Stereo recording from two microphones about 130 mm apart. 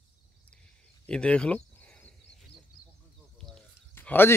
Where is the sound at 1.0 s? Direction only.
10° left (ahead or behind).